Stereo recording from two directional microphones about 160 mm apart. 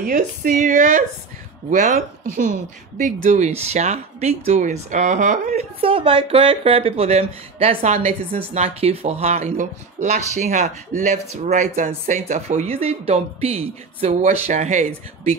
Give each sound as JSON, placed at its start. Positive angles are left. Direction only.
{"t": 0.0, "sound": "speech", "side_deg": -60}